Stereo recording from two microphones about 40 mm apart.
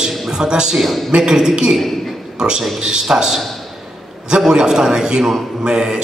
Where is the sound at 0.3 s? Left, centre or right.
Centre.